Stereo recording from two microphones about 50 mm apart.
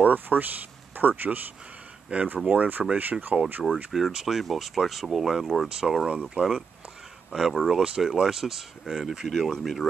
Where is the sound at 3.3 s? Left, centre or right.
Centre.